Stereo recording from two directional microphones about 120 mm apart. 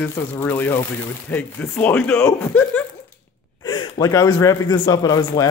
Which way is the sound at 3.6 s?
45° left (ahead or behind).